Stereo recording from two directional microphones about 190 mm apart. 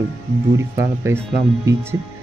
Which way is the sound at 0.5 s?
15° right (ahead or behind).